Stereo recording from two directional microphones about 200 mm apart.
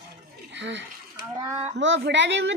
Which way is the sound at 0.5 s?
65° right (ahead or behind).